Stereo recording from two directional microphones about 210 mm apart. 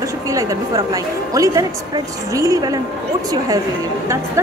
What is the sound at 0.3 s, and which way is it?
A woman's voice, 15° right (ahead or behind).